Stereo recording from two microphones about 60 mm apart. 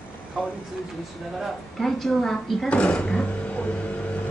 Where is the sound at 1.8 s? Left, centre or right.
Centre.